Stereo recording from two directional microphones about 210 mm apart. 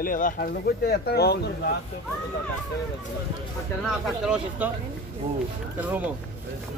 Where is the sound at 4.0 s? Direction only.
5° right (ahead or behind).